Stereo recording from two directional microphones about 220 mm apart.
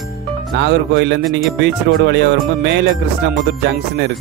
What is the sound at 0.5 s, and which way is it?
Speech, 50° right (ahead or behind).